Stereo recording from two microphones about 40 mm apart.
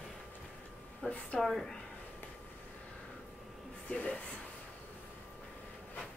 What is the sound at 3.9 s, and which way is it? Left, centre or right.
Speech, left.